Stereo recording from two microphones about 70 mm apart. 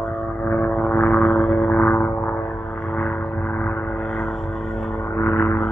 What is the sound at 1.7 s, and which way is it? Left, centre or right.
Vehicle, left.